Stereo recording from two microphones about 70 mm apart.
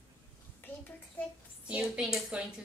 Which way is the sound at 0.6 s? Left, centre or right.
Left.